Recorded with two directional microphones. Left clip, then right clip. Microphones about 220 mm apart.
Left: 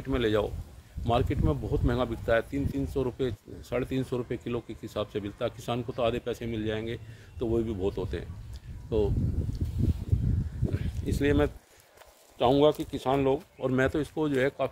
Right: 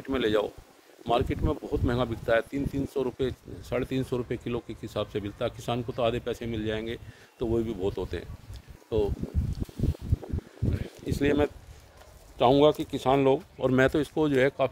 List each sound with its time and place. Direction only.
0.1 s speech: 10° right (ahead or behind)
10.8 s a sound: 10° right (ahead or behind)
12.4 s speech: 25° right (ahead or behind)